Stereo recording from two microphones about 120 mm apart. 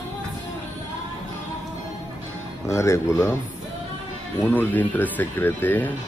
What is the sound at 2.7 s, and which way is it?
Speech, 25° left (ahead or behind).